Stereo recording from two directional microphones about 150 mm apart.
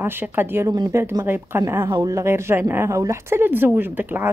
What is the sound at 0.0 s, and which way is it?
A woman's voice, 15° right (ahead or behind).